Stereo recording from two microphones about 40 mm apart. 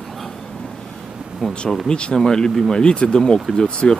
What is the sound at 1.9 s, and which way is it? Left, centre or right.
Speech, left.